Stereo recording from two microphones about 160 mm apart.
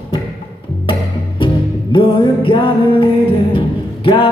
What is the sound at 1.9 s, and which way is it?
Music, 30° left (ahead or behind).